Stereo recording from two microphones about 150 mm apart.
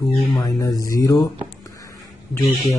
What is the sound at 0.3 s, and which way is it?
Speech, 25° left (ahead or behind).